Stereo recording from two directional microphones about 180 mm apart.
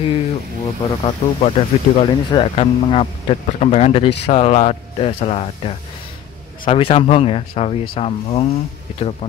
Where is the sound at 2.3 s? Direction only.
30° left (ahead or behind).